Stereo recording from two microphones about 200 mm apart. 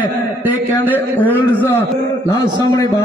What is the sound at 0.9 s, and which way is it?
A man's voice, 10° left (ahead or behind).